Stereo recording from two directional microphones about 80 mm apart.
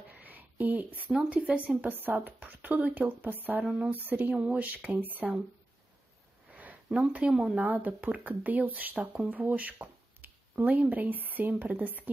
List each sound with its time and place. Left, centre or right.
0.1 s a sound: right
1.1 s speech: centre
3.6 s speech: centre
3.9 s speech: right
6.5 s speech: centre
7.5 s speech: right